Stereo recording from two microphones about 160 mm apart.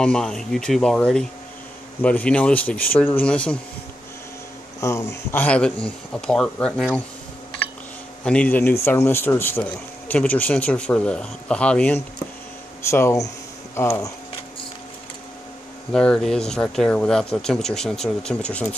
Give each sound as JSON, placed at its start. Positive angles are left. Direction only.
{"t": 0.0, "sound": "speech", "side_deg": 5}
{"t": 4.7, "sound": "speech", "side_deg": 15}
{"t": 8.2, "sound": "speech", "side_deg": 5}
{"t": 15.9, "sound": "speech", "side_deg": 5}